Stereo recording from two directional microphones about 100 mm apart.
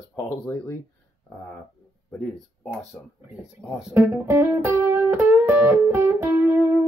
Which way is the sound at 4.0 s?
25° right (ahead or behind).